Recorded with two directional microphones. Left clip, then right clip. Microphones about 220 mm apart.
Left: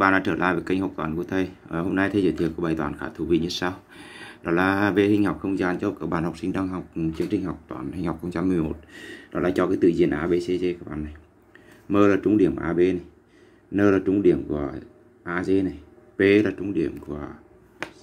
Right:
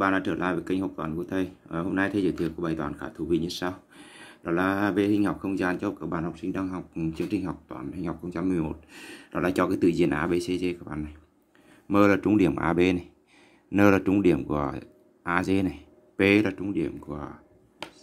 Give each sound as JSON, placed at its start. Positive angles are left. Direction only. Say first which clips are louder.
{"t": 0.0, "sound": "speech", "louder": "left 5 dB", "side_deg": 0}
{"t": 6.0, "sound": "speech", "louder": "left 4 dB", "side_deg": 10}
{"t": 7.0, "sound": "speech", "louder": "left 4 dB", "side_deg": -10}
{"t": 8.9, "sound": "speech", "louder": "left 3 dB", "side_deg": -20}